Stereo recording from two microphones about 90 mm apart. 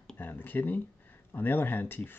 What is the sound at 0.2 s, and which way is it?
Speech, 20° left (ahead or behind).